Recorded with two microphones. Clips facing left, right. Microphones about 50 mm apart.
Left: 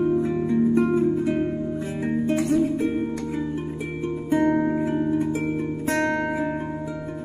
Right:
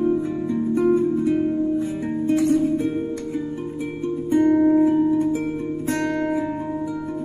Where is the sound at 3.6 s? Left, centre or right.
Centre.